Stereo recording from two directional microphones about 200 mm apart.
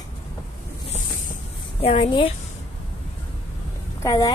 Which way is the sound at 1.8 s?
30° left (ahead or behind).